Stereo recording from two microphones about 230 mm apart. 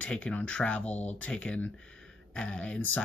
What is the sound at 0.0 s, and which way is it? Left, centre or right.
Speech, centre.